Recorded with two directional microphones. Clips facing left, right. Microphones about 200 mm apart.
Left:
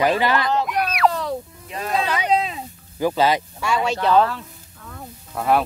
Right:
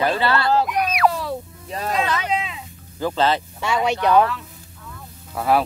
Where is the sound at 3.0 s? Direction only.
10° left (ahead or behind).